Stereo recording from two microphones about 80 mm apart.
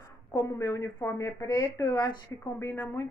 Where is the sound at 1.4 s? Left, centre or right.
Left.